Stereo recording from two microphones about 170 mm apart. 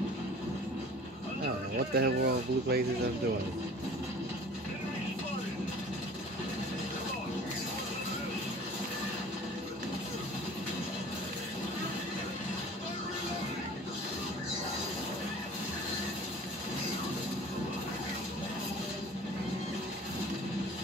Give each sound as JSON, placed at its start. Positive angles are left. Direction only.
{"t": 2.0, "sound": "speech", "side_deg": -70}